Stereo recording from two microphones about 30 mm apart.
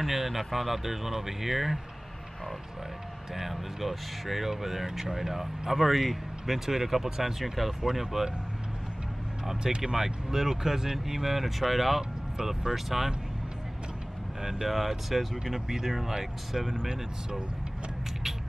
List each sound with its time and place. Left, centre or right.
0.0 s speech: centre
3.3 s speech: centre
7.3 s speech: centre
9.6 s speech: right; by 13.1 s centre
14.4 s speech: centre